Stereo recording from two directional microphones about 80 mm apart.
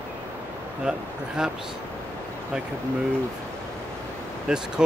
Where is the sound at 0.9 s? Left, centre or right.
Centre.